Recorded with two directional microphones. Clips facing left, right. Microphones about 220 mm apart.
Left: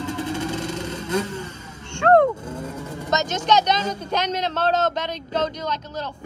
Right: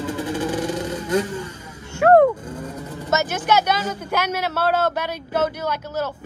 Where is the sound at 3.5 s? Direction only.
10° right (ahead or behind).